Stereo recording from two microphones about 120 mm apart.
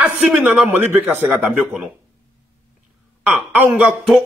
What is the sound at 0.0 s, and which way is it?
A man's voice, 10° right (ahead or behind).